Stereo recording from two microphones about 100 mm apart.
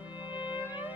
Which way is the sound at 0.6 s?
20° right (ahead or behind).